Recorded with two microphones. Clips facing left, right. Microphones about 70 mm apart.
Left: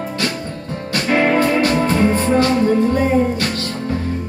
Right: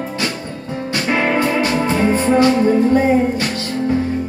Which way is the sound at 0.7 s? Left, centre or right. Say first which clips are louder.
Left 1 dB; right.